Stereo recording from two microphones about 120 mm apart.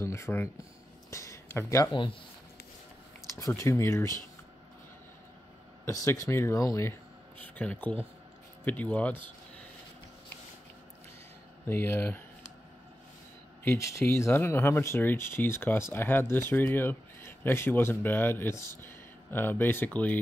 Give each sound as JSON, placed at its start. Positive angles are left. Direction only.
{"t": 0.0, "sound": "speech", "side_deg": 20}
{"t": 3.3, "sound": "speech", "side_deg": 25}
{"t": 5.9, "sound": "speech", "side_deg": 25}
{"t": 7.3, "sound": "speech", "side_deg": 10}
{"t": 11.6, "sound": "speech", "side_deg": 20}
{"t": 13.7, "sound": "speech", "side_deg": 25}